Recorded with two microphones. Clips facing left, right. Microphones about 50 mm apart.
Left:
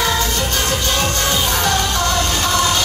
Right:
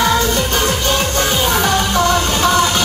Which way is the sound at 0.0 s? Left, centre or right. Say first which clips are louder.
Right 4 dB; right.